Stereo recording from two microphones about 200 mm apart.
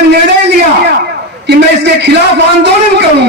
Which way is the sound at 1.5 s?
60° right (ahead or behind).